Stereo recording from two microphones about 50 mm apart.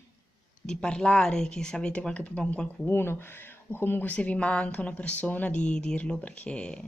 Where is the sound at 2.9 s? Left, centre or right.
Left.